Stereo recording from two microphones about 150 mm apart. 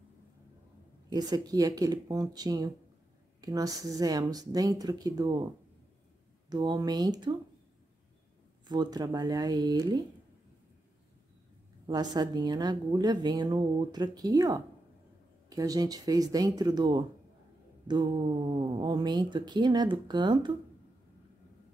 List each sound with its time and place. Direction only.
1.1 s a woman's voice: 25° right (ahead or behind)
6.5 s a woman's voice: 25° right (ahead or behind)
8.6 s a woman's voice: 30° right (ahead or behind)
11.8 s a woman's voice: 30° right (ahead or behind)